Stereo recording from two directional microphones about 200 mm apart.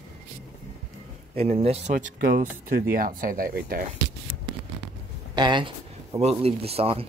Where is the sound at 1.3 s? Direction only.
30° right (ahead or behind); by 3.8 s 45° right (ahead or behind).